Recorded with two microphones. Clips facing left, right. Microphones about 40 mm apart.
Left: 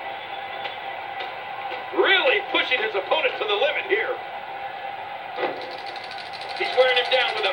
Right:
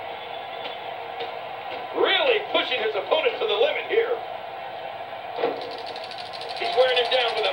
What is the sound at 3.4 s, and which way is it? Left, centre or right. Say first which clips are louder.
Speech: even; left.